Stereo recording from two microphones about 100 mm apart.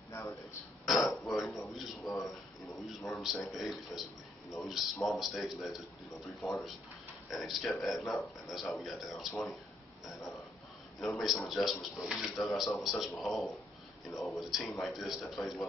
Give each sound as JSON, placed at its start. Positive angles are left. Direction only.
{"t": 0.1, "sound": "a sound", "side_deg": 20}
{"t": 0.8, "sound": "throat clearing", "side_deg": 0}
{"t": 1.8, "sound": "a man's voice", "side_deg": 0}
{"t": 7.2, "sound": "speech", "side_deg": 0}
{"t": 11.0, "sound": "speech", "side_deg": 0}